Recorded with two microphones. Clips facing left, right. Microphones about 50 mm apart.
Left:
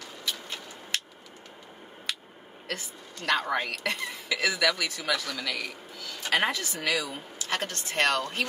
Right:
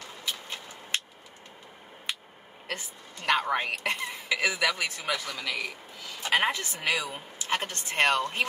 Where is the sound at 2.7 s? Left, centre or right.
Right.